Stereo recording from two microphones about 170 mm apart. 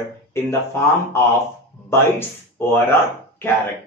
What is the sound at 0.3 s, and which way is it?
Speech, 15° left (ahead or behind).